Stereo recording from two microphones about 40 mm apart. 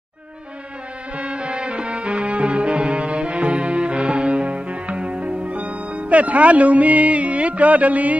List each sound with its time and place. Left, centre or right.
1.1 s music: right